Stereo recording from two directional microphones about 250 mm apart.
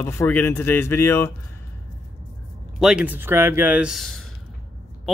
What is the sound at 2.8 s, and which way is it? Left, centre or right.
Speech, centre.